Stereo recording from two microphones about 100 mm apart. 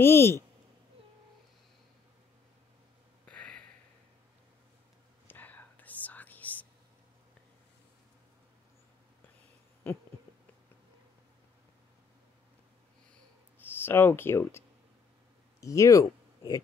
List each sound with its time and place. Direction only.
0.0 s speech: 25° left (ahead or behind)
3.3 s a sound: 10° left (ahead or behind)
5.3 s whispering: 15° left (ahead or behind)
13.6 s speech: 20° left (ahead or behind)
15.6 s speech: 30° left (ahead or behind)